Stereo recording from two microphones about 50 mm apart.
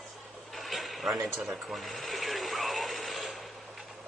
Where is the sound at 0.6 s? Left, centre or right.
Centre.